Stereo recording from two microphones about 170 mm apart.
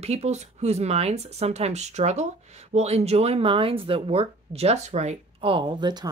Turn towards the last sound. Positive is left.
turn(degrees=-25)  # may be behind; listen again after turning